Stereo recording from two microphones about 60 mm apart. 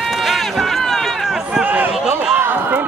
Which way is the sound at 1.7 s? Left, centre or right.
Right.